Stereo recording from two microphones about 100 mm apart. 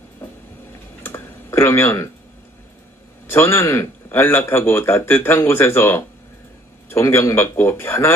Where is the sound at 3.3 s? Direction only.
25° left (ahead or behind).